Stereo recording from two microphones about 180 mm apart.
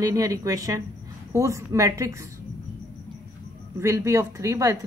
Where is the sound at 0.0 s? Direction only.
20° right (ahead or behind).